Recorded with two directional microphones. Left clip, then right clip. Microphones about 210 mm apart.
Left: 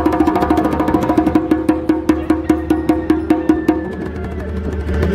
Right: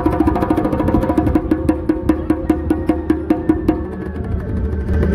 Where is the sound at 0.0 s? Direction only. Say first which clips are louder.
Left 2 dB; centre (ahead or behind).